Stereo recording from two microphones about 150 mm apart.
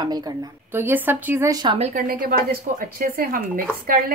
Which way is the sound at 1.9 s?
70° right (ahead or behind).